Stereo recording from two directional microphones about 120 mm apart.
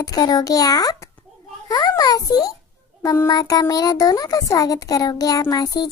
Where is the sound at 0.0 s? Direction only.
35° left (ahead or behind).